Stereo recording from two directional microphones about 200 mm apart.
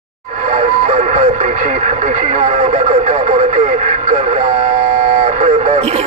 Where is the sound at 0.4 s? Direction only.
40° right (ahead or behind).